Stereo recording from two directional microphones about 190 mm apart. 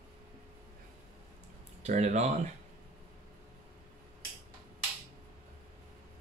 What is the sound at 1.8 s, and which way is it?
Speech, 35° right (ahead or behind).